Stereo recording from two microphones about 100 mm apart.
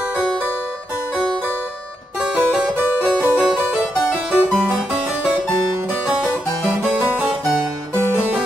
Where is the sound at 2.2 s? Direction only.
10° right (ahead or behind).